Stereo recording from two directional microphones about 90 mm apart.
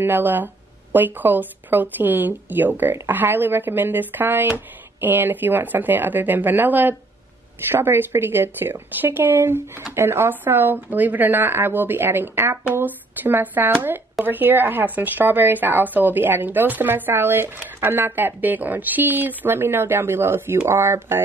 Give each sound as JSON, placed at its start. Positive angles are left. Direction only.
{"t": 0.0, "sound": "speech", "side_deg": -20}